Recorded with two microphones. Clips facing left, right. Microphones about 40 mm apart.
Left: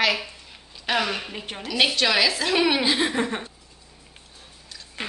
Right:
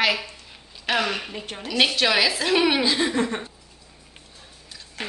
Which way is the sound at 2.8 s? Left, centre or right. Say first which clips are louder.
Right 1 dB; centre.